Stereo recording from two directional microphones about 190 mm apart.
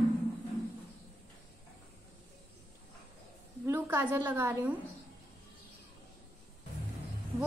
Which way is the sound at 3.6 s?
15° right (ahead or behind).